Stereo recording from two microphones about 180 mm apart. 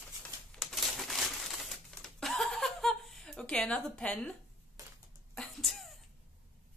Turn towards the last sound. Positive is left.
turn(degrees=0)  # may be behind; listen again after turning